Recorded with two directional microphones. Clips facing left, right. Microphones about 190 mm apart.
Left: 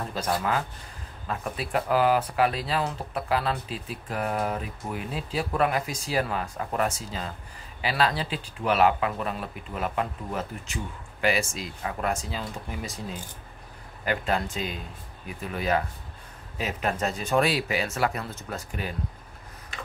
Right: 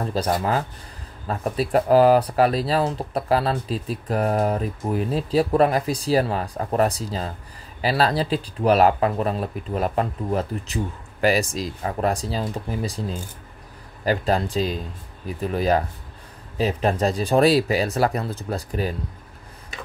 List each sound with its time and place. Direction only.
0.0 s speech: 35° right (ahead or behind)